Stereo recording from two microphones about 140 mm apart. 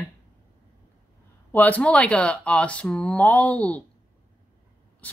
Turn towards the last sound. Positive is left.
turn(degrees=10)  # may be behind; listen again after turning